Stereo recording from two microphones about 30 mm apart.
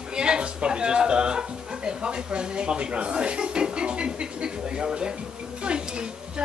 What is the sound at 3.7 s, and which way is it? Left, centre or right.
Speech, right.